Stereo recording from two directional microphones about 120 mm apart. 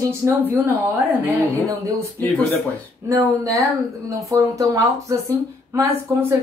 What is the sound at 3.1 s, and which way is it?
Speech, 25° right (ahead or behind).